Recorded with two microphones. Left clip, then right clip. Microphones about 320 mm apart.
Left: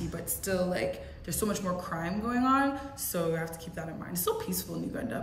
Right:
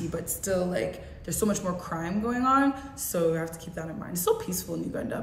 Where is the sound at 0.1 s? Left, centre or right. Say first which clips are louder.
Right 4 dB; centre.